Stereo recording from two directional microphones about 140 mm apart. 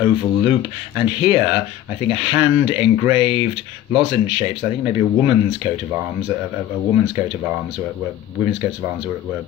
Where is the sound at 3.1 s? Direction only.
45° left (ahead or behind).